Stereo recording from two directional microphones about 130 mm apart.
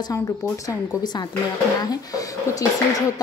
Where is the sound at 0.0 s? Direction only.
25° left (ahead or behind).